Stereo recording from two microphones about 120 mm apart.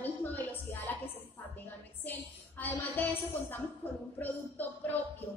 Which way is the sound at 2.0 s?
15° left (ahead or behind).